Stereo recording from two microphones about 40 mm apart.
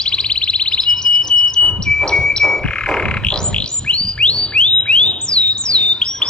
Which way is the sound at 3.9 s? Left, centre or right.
Left.